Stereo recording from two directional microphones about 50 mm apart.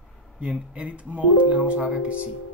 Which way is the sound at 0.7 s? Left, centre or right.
Right.